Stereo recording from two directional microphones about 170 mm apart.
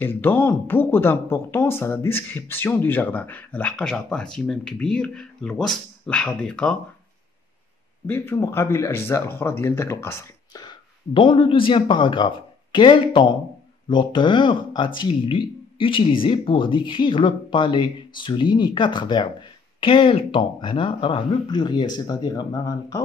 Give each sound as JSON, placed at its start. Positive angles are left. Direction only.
{"t": 0.0, "sound": "speech", "side_deg": 10}
{"t": 8.1, "sound": "speech", "side_deg": 15}
{"t": 10.6, "sound": "speech", "side_deg": 25}